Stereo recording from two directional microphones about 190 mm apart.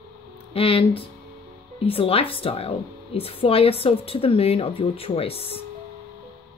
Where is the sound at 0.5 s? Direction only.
30° left (ahead or behind).